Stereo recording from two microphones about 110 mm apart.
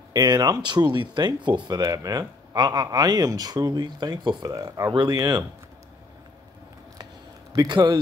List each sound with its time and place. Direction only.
0.1 s speech: 40° right (ahead or behind)
7.5 s speech: 35° right (ahead or behind)